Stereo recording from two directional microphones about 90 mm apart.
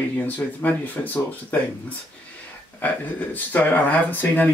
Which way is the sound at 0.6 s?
20° left (ahead or behind).